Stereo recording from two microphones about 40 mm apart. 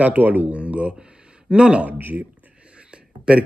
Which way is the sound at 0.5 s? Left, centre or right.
Right.